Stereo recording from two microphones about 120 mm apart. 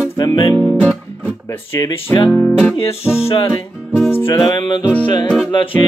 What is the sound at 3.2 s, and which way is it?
Music, 45° left (ahead or behind).